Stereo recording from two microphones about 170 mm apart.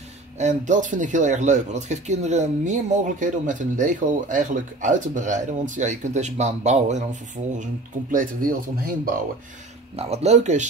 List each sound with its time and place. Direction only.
0.4 s speech: 45° right (ahead or behind)
9.9 s speech: 35° right (ahead or behind)